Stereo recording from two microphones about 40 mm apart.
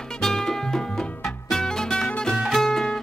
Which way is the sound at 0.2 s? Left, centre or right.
Centre.